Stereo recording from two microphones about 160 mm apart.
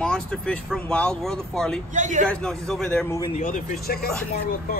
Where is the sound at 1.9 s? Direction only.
50° right (ahead or behind).